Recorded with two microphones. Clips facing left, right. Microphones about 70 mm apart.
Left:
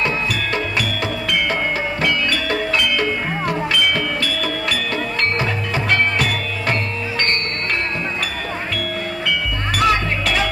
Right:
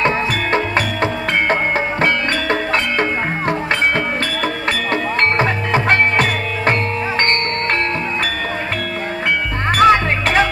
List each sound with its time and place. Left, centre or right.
0.0 s music: right
9.7 s music: right